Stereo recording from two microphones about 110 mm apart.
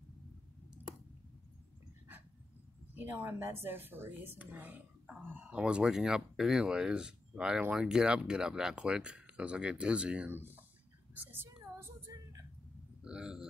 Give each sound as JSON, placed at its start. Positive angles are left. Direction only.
{"t": 2.9, "sound": "speech", "side_deg": -20}
{"t": 11.1, "sound": "child singing", "side_deg": -20}
{"t": 13.0, "sound": "a sound", "side_deg": -10}